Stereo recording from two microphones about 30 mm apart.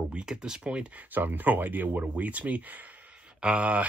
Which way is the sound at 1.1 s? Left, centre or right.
Right.